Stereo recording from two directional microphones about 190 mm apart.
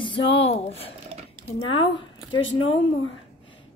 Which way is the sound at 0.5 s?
30° left (ahead or behind).